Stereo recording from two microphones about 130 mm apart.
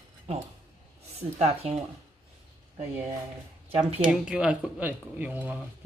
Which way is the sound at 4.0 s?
10° right (ahead or behind).